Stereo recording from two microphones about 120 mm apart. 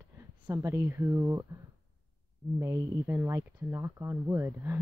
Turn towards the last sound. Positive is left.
turn(degrees=-20)  # may be behind; listen again after turning